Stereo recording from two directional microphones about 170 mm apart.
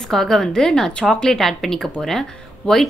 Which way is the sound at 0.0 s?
Centre (ahead or behind).